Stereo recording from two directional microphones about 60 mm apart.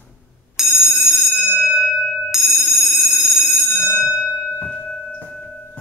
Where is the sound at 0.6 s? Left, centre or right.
Centre.